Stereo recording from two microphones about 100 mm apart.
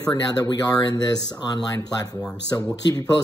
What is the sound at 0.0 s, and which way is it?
Speech, 40° left (ahead or behind).